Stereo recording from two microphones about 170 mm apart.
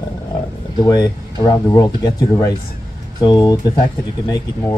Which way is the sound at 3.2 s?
25° left (ahead or behind).